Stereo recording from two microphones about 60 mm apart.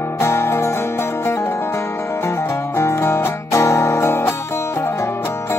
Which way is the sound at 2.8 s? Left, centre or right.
Left.